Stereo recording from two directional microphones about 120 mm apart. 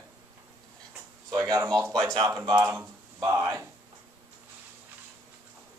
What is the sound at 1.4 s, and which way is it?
Speech, 25° right (ahead or behind).